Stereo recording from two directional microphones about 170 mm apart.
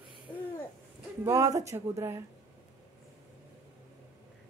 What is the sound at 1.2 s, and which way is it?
Speech, 20° right (ahead or behind).